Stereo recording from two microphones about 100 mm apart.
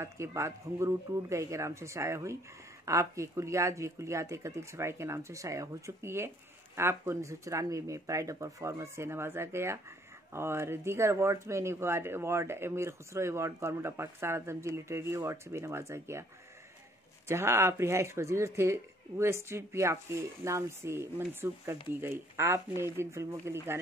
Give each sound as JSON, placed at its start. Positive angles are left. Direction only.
{"t": 0.0, "sound": "speech", "side_deg": -30}
{"t": 17.3, "sound": "speech", "side_deg": -25}